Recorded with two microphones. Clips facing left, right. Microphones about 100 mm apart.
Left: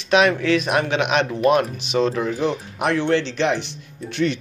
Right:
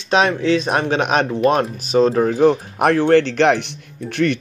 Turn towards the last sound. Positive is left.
turn(degrees=-60)  # may be behind; listen again after turning